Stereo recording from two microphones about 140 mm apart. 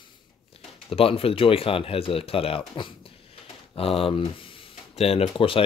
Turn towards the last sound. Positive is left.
turn(degrees=40)  # may be behind; listen again after turning